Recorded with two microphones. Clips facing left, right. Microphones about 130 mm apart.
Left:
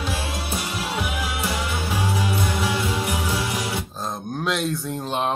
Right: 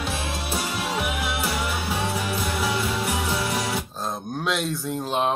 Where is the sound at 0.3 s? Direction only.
25° right (ahead or behind).